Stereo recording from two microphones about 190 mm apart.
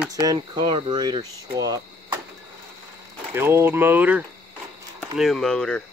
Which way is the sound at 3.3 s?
10° right (ahead or behind).